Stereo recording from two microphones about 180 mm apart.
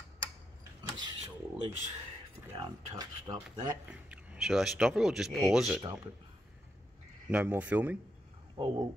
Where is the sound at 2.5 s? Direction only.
25° right (ahead or behind).